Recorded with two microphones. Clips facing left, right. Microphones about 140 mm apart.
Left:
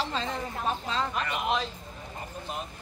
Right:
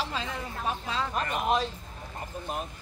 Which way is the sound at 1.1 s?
40° right (ahead or behind).